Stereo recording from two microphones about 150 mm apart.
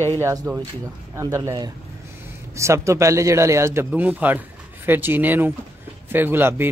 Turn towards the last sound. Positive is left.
turn(degrees=-15)  # may be behind; listen again after turning